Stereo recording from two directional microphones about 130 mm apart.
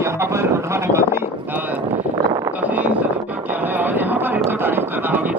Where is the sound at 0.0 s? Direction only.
20° right (ahead or behind).